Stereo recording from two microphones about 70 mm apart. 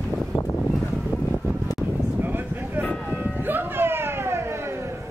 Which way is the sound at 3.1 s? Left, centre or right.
Right.